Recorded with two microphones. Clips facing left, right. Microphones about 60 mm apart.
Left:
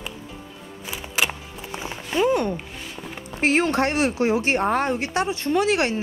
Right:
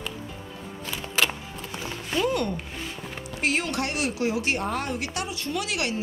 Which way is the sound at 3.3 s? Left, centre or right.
Left.